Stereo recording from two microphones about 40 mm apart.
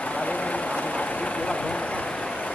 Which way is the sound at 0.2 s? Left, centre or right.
Left.